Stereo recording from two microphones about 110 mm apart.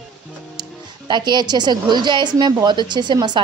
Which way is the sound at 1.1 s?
40° right (ahead or behind).